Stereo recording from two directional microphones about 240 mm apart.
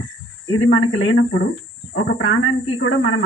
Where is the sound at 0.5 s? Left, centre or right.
Left.